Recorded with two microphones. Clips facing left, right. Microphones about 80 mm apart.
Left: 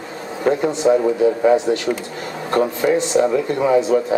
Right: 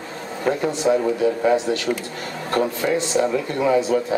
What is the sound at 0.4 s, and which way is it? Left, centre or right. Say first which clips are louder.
A man's voice: left 4 dB; centre.